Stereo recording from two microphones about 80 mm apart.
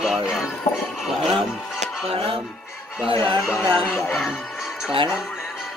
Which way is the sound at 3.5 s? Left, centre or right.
Left.